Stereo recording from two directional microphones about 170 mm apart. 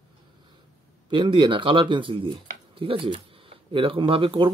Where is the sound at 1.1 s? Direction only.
30° right (ahead or behind).